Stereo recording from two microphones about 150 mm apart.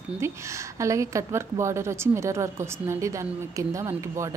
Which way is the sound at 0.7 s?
20° right (ahead or behind).